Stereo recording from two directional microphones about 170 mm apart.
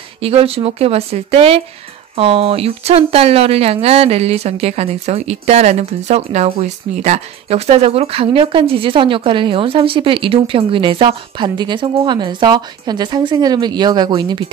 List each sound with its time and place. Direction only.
0.2 s speech: 35° right (ahead or behind)